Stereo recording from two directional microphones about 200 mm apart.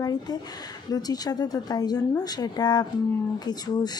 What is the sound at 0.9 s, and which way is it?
Speech, 20° left (ahead or behind).